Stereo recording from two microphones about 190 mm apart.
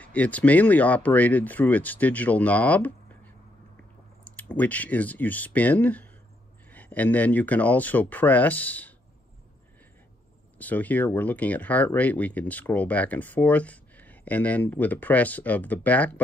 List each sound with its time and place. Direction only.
0.0 s speech: 10° left (ahead or behind)
10.6 s speech: 10° left (ahead or behind)